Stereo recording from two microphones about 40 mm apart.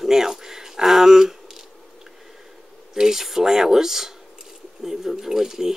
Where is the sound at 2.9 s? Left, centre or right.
Centre.